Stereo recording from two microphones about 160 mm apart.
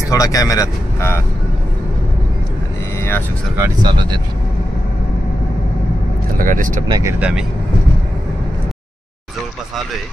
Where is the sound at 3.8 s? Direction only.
30° right (ahead or behind).